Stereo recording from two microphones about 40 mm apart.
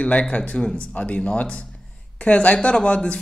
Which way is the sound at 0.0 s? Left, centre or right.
Left.